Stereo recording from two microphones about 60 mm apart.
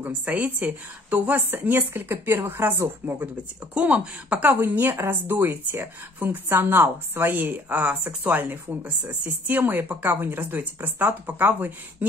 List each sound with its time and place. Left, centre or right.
0.0 s speech: right
3.7 s speech: right